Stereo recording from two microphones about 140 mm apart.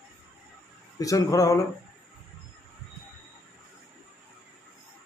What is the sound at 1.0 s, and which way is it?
Speech, 25° left (ahead or behind).